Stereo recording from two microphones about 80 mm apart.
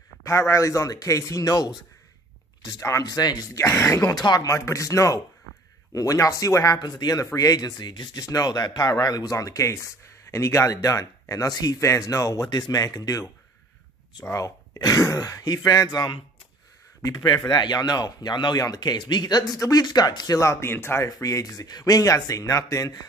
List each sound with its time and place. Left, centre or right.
0.2 s speech: left
2.8 s speech: left
3.5 s speech: left
4.0 s speech: left
6.8 s speech: left
18.6 s speech: left
21.0 s speech: left